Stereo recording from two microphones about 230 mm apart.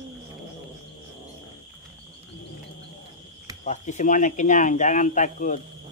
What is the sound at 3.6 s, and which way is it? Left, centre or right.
Speech, left.